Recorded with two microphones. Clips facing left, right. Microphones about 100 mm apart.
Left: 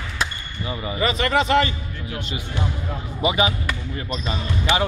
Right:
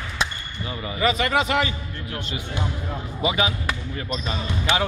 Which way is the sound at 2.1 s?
10° left (ahead or behind).